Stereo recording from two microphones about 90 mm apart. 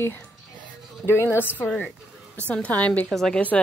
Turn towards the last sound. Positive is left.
turn(degrees=5)  # may be behind; listen again after turning